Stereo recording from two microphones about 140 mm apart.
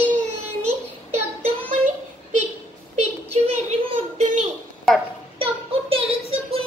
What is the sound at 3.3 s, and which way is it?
Speech, 50° right (ahead or behind).